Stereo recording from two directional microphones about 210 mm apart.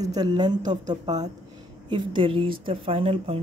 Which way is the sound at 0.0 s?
20° right (ahead or behind).